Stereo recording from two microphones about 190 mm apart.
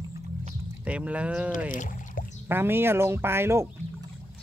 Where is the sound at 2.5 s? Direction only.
10° right (ahead or behind).